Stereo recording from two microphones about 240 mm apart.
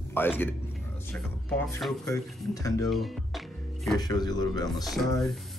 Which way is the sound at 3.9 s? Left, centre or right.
Centre.